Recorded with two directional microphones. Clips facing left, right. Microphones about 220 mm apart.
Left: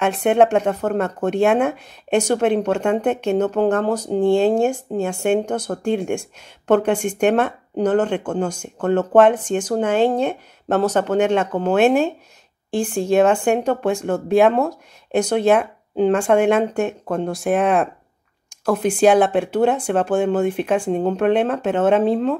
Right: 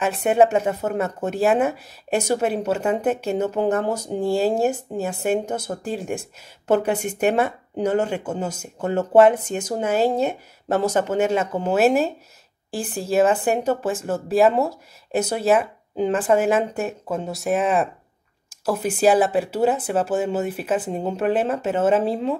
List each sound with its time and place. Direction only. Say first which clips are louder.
0.0 s speech: left 2 dB; 5° right (ahead or behind)
12.7 s speech: left 7 dB; 35° right (ahead or behind)
13.0 s speech: left 2 dB; 5° right (ahead or behind)